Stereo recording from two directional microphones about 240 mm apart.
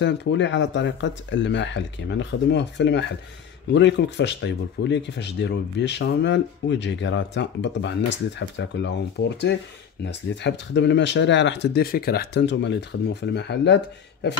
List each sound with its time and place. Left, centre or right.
0.0 s speech: left